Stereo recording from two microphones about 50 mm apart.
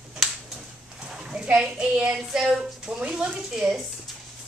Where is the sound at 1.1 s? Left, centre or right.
Centre.